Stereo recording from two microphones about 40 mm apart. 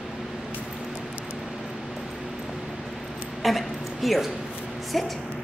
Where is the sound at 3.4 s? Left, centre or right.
Centre.